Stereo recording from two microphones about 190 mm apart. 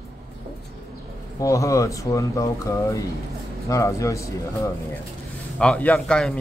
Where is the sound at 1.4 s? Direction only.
15° left (ahead or behind).